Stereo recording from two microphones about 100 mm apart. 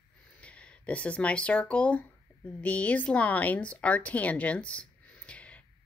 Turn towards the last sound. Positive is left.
turn(degrees=15)  # may be behind; listen again after turning